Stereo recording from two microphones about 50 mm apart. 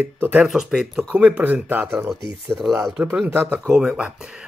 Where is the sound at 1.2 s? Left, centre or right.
Right.